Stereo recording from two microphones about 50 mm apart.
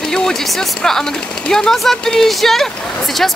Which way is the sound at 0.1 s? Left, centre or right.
Centre.